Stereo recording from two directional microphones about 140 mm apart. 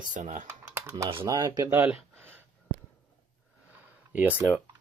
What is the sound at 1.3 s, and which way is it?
Speech, 25° right (ahead or behind).